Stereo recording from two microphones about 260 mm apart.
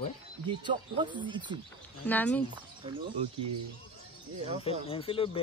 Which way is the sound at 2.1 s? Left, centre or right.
Centre.